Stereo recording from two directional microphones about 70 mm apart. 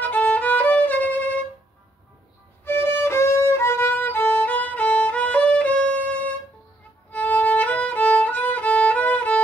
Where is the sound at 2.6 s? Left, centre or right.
Left; by 6.0 s centre.